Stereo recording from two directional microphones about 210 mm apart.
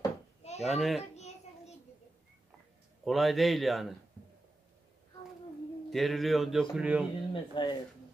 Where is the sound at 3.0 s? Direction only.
Centre (ahead or behind).